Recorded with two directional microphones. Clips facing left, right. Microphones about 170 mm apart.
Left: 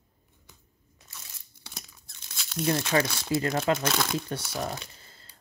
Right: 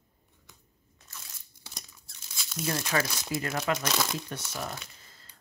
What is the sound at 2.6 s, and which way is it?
Speech, 30° left (ahead or behind).